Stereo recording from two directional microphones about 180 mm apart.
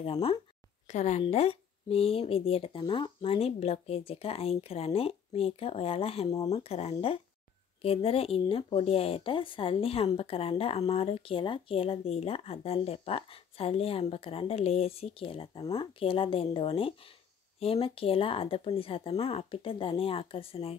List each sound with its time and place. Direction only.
0.0 s speech: 35° left (ahead or behind)